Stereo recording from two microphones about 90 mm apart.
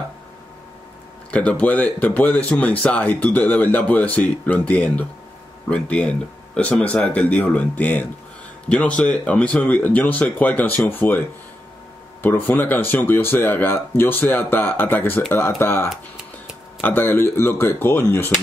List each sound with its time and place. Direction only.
1.3 s speech: 15° left (ahead or behind)